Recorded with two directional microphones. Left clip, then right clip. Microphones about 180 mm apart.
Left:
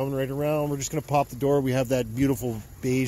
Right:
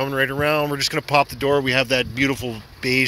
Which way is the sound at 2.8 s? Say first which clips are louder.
Right 8 dB; 15° left (ahead or behind).